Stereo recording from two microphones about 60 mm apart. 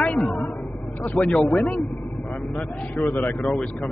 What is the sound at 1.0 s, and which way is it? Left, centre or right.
Speech, centre.